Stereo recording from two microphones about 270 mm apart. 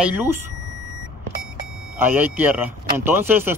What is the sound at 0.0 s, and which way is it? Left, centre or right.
Speech, centre.